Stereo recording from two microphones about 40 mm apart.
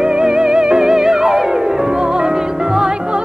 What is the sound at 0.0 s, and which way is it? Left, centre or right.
Music, centre.